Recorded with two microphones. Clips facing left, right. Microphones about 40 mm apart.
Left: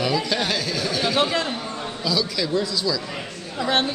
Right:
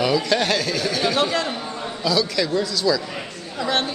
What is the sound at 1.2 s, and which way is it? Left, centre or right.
Speech, centre.